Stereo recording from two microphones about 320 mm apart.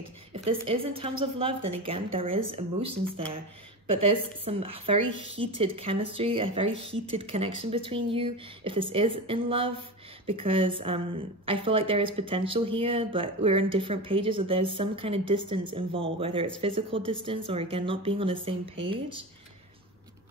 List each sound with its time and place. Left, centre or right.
0.3 s a woman's voice: centre
4.5 s speech: centre